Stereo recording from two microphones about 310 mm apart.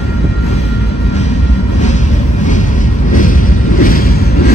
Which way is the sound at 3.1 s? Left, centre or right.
Left.